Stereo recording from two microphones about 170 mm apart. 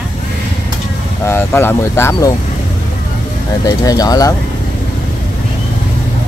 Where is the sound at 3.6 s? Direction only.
20° left (ahead or behind).